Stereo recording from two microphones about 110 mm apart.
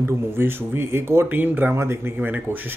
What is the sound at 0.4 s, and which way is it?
Speech, 20° right (ahead or behind).